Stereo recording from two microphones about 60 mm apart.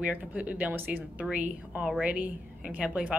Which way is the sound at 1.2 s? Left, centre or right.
Right.